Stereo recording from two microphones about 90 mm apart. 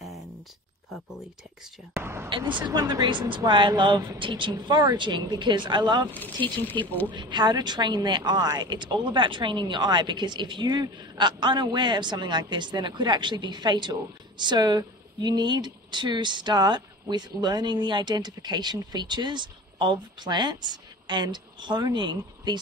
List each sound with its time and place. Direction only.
2.2 s speech: 65° right (ahead or behind)
6.1 s speech: 20° left (ahead or behind)
7.1 s speech: 60° right (ahead or behind)